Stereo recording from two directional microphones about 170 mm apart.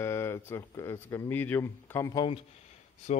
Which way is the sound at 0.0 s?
15° left (ahead or behind).